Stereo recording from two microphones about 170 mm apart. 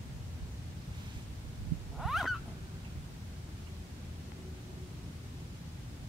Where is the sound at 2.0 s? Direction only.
Centre (ahead or behind).